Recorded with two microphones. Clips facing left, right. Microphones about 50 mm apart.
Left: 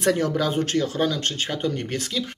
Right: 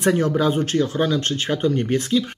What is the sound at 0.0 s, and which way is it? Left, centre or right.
Speech, centre.